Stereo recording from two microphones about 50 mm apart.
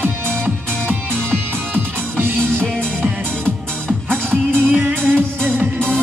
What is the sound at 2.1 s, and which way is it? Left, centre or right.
Music, right.